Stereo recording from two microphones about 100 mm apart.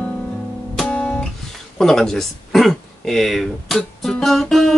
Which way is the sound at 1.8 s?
5° left (ahead or behind).